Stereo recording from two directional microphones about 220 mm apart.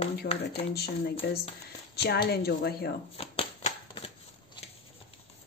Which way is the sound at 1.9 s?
45° left (ahead or behind).